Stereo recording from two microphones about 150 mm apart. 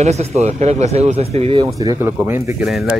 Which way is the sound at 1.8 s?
20° right (ahead or behind).